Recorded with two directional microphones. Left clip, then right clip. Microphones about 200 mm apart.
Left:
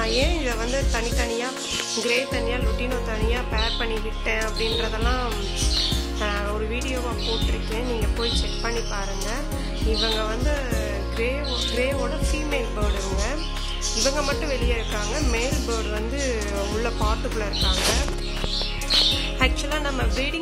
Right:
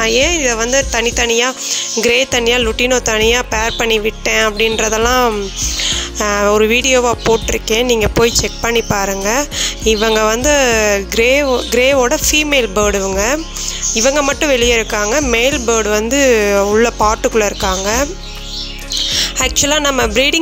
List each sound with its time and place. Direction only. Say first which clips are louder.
0.0 s speech: right 11 dB; 40° right (ahead or behind)
8.2 s speech: right 13 dB; 55° right (ahead or behind)
19.4 s speech: right 11 dB; 50° right (ahead or behind)